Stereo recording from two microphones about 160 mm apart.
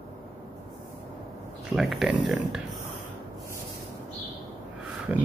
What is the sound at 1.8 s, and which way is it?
Speech, centre (ahead or behind).